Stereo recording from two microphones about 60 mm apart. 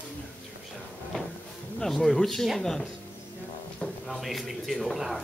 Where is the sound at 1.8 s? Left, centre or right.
Centre.